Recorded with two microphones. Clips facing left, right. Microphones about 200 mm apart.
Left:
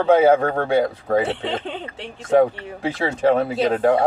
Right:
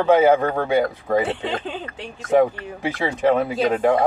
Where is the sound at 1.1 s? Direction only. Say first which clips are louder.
Left 1 dB; 25° left (ahead or behind).